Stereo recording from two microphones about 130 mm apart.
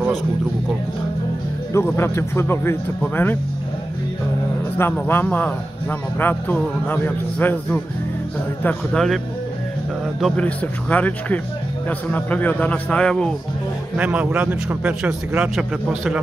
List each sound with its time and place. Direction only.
1.7 s speech: 20° left (ahead or behind)
4.7 s a man's voice: 15° left (ahead or behind)
10.3 s a man's voice: 10° left (ahead or behind)
13.9 s a man's voice: 10° right (ahead or behind)